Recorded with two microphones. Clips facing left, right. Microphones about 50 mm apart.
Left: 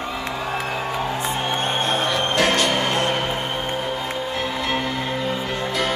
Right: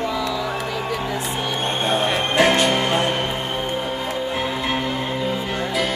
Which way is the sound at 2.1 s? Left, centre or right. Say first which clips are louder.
Right 3 dB; centre.